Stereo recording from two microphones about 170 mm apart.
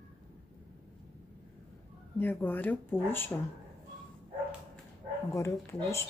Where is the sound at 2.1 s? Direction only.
10° left (ahead or behind).